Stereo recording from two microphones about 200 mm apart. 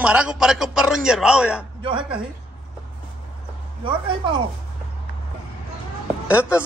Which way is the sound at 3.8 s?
25° right (ahead or behind).